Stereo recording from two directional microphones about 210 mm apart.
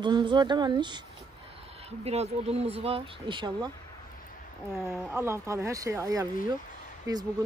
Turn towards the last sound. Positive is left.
turn(degrees=-15)  # may be behind; listen again after turning